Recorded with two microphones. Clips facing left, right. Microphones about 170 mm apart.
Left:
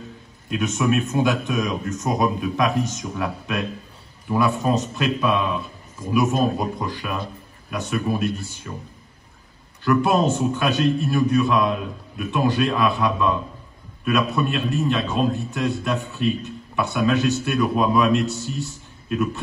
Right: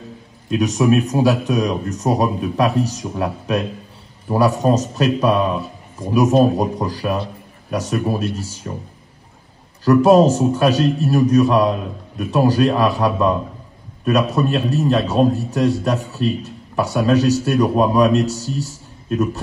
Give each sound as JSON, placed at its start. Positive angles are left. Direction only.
{"t": 0.5, "sound": "a man's voice", "side_deg": -35}
{"t": 9.8, "sound": "a man's voice", "side_deg": -40}